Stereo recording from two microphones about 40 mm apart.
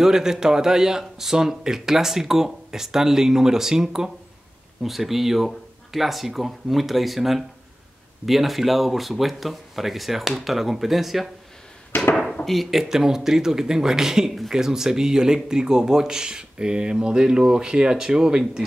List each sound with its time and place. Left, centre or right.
0.0 s a man's voice: centre
12.4 s a man's voice: centre